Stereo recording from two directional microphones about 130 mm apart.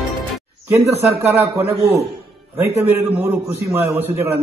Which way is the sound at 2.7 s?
15° right (ahead or behind).